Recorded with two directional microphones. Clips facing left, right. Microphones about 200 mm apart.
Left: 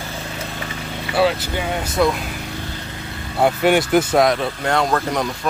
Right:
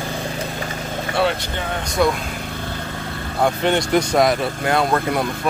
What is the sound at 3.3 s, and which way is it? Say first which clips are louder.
Speech: left 3 dB; 5° left (ahead or behind).